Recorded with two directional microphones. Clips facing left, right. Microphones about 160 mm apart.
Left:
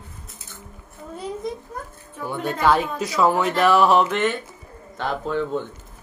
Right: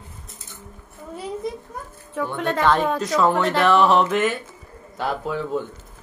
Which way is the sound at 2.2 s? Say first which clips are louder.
Right 5 dB; 90° right.